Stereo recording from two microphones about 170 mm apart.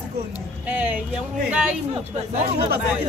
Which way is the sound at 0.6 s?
10° right (ahead or behind).